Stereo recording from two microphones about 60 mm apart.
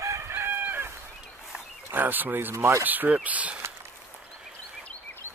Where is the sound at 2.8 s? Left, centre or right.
Right.